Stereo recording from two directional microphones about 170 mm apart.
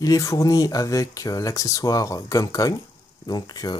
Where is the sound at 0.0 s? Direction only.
20° left (ahead or behind).